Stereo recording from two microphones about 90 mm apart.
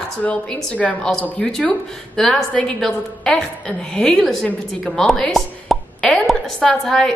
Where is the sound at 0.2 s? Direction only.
15° left (ahead or behind).